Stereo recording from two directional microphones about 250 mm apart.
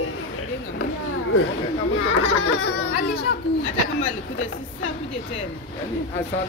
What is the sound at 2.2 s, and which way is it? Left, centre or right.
Laughter, left.